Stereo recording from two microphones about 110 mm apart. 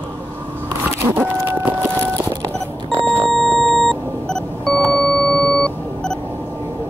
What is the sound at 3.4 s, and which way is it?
Beep, 5° left (ahead or behind).